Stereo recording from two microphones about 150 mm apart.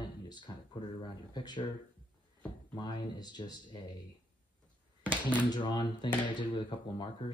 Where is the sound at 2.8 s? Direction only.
30° left (ahead or behind).